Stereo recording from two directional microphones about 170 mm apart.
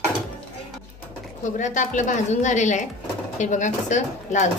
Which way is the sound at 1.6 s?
45° left (ahead or behind).